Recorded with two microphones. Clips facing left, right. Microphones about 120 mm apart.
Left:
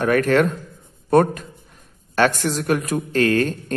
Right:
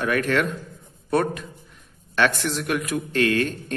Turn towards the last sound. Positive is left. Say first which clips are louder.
# left 3 dB
turn(degrees=40)  # may be behind; listen again after turning